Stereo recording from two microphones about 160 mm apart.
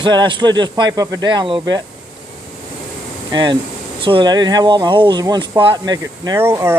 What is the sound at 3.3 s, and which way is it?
Speech, 30° right (ahead or behind).